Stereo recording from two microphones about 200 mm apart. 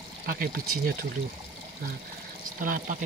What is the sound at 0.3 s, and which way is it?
Speech, 45° right (ahead or behind).